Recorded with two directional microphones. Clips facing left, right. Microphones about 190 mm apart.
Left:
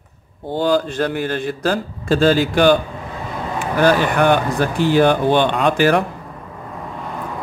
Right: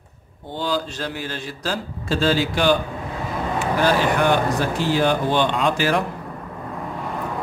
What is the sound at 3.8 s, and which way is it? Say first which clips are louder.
A man's voice: left 5 dB; 55° left (ahead or behind).